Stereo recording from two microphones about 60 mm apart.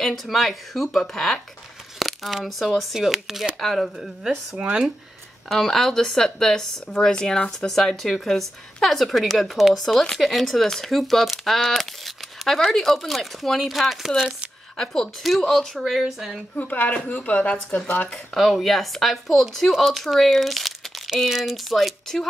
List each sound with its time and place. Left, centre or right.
0.0 s speech: centre
2.0 s a sound: centre
2.8 s speech: centre
4.6 s speech: centre
5.5 s speech: centre
16.5 s speech: left
18.3 s speech: centre